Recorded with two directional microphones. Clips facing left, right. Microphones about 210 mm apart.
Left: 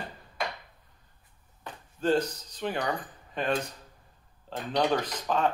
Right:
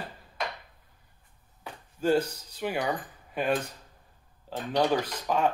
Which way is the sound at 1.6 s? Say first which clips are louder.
Right 1 dB; 10° right (ahead or behind).